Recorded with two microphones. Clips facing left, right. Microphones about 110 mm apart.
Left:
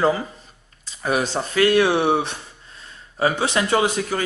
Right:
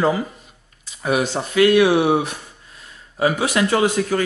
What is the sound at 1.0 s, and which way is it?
Speech, 35° left (ahead or behind).